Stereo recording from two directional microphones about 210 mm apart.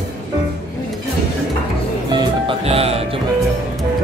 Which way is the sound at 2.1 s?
20° right (ahead or behind).